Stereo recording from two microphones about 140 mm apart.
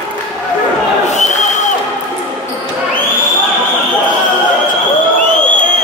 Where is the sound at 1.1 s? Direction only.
55° left (ahead or behind).